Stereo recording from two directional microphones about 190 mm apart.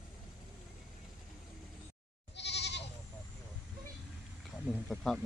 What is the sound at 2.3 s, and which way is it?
Goat, 65° left (ahead or behind).